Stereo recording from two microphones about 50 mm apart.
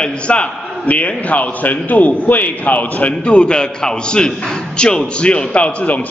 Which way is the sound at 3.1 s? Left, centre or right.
Left.